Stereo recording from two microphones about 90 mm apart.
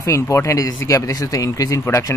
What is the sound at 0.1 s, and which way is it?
Speech, 35° left (ahead or behind).